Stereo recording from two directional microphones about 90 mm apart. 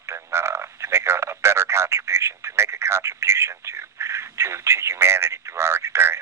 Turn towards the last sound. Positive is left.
turn(degrees=-30)  # may be behind; listen again after turning